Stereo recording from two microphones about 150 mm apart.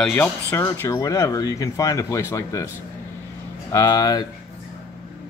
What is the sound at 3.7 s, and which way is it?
Speech, 25° left (ahead or behind).